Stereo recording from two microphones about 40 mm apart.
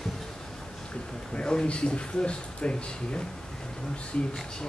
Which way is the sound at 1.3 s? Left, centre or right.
Left.